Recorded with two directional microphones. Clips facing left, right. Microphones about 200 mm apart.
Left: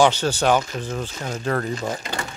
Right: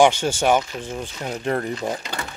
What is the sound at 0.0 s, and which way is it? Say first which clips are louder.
Speech: right 1 dB; 15° right (ahead or behind).